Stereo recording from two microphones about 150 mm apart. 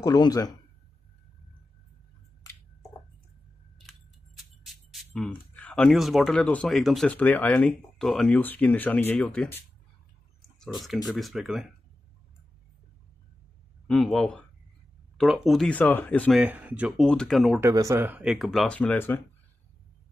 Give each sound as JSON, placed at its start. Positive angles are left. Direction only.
{"t": 0.0, "sound": "speech", "side_deg": 25}
{"t": 4.4, "sound": "speech", "side_deg": 0}
{"t": 10.6, "sound": "speech", "side_deg": 0}
{"t": 13.8, "sound": "speech", "side_deg": 5}
{"t": 15.8, "sound": "speech", "side_deg": 10}
{"t": 16.3, "sound": "speech", "side_deg": -10}
{"t": 17.0, "sound": "speech", "side_deg": 5}
{"t": 17.6, "sound": "speech", "side_deg": -20}